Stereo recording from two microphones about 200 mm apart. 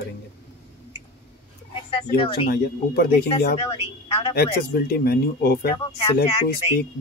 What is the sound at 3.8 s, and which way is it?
Speech, 30° left (ahead or behind).